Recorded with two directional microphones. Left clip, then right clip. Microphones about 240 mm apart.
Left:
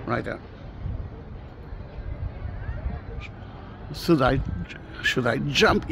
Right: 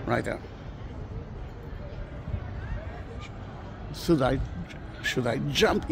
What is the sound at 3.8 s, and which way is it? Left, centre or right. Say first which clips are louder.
Speech: left 4 dB; left.